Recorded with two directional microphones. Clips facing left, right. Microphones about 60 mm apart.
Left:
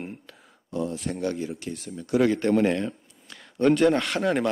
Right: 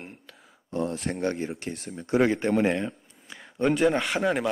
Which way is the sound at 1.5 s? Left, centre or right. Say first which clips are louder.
Even; right.